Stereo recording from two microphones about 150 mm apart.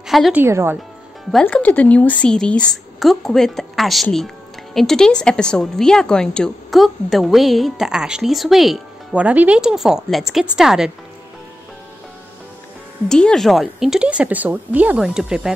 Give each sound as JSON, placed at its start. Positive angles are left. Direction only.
{"t": 0.0, "sound": "a woman's voice", "side_deg": 0}
{"t": 0.4, "sound": "a woman's voice", "side_deg": -15}
{"t": 1.4, "sound": "a woman's voice", "side_deg": 10}
{"t": 13.1, "sound": "a woman's voice", "side_deg": 5}